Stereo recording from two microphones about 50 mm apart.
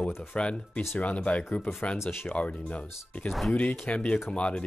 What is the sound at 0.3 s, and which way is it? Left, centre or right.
Speech, left.